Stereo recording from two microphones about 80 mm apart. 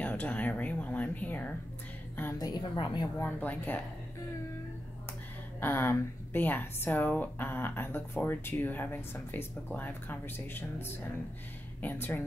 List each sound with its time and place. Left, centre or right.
0.0 s speech: centre
2.3 s a woman's voice: left
3.2 s speech: left
5.6 s speech: left